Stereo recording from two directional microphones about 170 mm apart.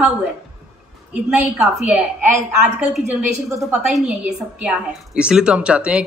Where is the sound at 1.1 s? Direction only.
5° right (ahead or behind).